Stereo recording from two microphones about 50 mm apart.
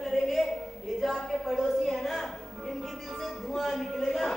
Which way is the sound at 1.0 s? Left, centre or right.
Centre.